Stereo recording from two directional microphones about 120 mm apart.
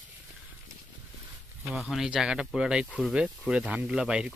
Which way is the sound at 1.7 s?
Centre (ahead or behind).